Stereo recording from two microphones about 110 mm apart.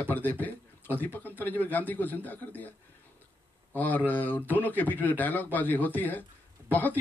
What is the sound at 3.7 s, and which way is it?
A man's voice, 15° left (ahead or behind).